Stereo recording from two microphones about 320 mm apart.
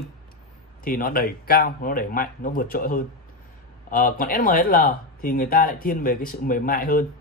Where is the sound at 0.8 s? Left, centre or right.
Left.